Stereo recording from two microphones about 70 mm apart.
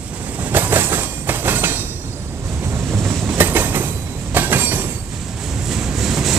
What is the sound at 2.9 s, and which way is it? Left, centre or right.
Train, right.